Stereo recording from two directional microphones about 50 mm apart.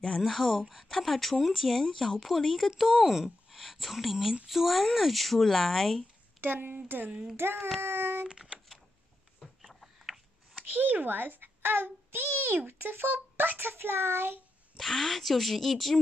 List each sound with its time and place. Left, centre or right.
0.2 s speech: centre
2.8 s speech: centre
6.4 s a child's voice: right
7.4 s a child's voice: right
8.3 s a sound: centre
9.8 s a sound: centre
10.5 s a child's voice: right
14.8 s speech: centre